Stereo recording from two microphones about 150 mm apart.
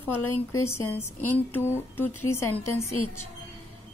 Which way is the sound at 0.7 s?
15° left (ahead or behind).